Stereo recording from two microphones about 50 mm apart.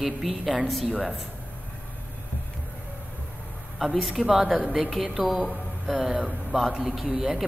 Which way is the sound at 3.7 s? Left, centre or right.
Centre.